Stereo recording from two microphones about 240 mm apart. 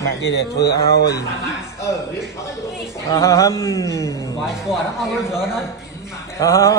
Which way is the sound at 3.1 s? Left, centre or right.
Centre.